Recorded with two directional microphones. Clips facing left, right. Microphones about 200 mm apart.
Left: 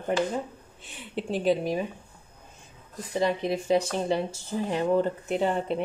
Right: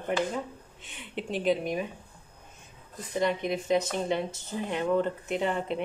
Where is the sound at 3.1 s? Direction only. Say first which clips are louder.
Left 2 dB; 30° left (ahead or behind).